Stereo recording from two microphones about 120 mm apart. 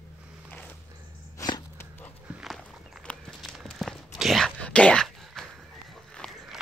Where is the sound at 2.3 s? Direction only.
Centre (ahead or behind).